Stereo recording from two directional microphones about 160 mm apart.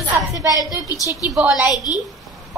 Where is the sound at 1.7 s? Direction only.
25° left (ahead or behind).